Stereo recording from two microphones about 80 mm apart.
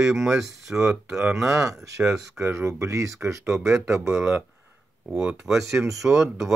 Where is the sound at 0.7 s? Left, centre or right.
Centre.